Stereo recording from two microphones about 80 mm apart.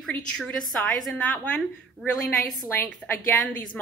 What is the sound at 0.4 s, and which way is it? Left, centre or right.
A woman's voice, centre.